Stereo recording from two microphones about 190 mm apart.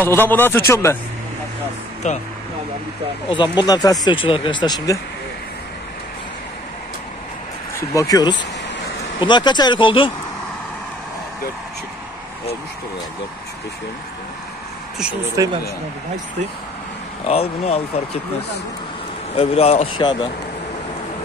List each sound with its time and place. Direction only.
0.0 s speech: 10° left (ahead or behind)
2.0 s speech: 40° left (ahead or behind)
3.3 s speech: 25° left (ahead or behind)
7.9 s speech: 20° left (ahead or behind)
15.4 s speech: 15° right (ahead or behind)
17.3 s speech: 30° left (ahead or behind)
19.3 s speech: 30° left (ahead or behind)